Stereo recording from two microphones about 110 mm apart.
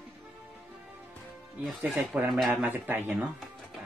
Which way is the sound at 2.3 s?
Centre (ahead or behind).